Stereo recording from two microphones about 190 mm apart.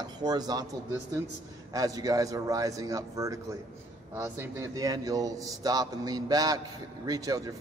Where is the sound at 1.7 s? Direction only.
20° right (ahead or behind).